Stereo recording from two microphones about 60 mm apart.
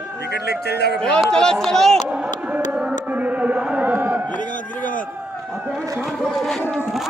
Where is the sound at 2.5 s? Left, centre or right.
Right.